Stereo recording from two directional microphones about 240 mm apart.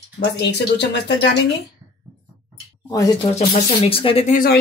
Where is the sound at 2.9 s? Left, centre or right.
Centre; by 4.6 s left.